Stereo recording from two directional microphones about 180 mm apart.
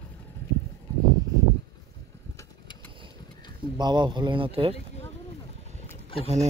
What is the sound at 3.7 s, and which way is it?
Speech, 25° right (ahead or behind).